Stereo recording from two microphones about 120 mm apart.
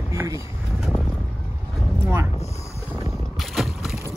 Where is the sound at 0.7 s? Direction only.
Centre (ahead or behind).